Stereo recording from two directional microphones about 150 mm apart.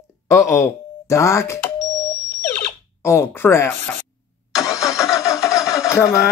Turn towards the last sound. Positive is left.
turn(degrees=20)  # may be behind; listen again after turning